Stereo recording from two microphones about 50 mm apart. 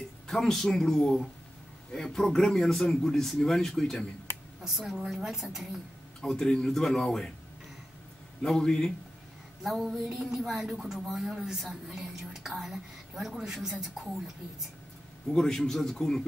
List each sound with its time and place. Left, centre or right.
0.3 s a man's voice: centre
4.6 s a woman's voice: centre
6.2 s a man's voice: centre
8.4 s a man's voice: centre
9.6 s a woman's voice: centre
15.3 s a man's voice: centre